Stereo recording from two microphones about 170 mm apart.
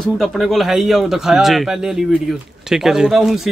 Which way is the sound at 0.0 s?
Centre (ahead or behind).